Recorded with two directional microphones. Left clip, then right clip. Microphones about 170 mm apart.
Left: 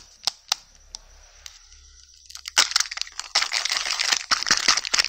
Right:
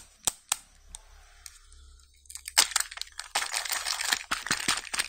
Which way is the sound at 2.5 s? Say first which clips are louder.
Left 5 dB; 10° left (ahead or behind).